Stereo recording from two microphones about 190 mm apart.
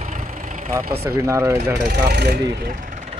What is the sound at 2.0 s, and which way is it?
Speech, 55° right (ahead or behind).